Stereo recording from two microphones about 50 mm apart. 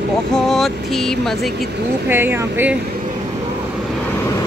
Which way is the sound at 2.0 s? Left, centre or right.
Right.